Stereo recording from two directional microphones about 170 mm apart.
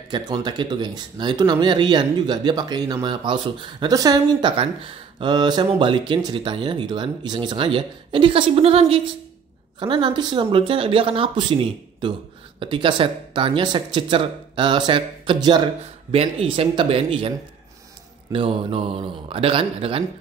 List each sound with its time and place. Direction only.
0.1 s speech: 25° right (ahead or behind)
18.3 s speech: 30° right (ahead or behind)